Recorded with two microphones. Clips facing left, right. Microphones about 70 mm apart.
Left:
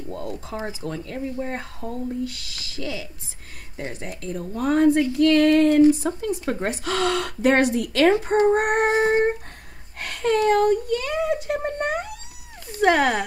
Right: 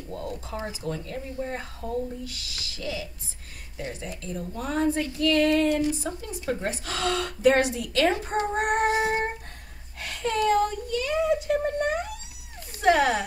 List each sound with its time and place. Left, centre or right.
0.5 s speech: left
0.8 s speech: left
9.9 s a sound: left
12.7 s speech: left